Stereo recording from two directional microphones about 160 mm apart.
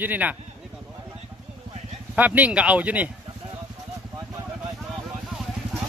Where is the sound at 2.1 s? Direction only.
10° right (ahead or behind).